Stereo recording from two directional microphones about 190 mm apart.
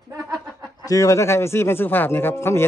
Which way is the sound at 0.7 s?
15° left (ahead or behind).